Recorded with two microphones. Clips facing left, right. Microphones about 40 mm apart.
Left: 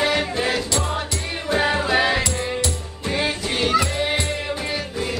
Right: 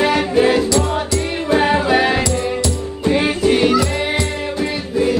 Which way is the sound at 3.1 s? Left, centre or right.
Right.